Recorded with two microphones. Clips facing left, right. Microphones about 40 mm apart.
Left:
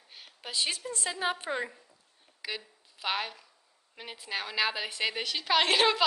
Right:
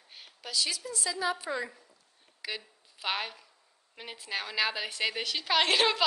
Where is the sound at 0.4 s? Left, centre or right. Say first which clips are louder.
Even; left.